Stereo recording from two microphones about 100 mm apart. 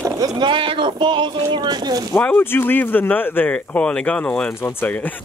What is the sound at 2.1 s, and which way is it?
Speech, 15° left (ahead or behind).